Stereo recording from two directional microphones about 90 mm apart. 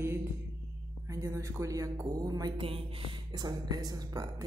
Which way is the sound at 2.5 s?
90° right.